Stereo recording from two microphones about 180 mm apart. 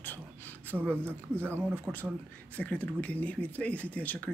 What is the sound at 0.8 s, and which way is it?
Speech, 10° left (ahead or behind).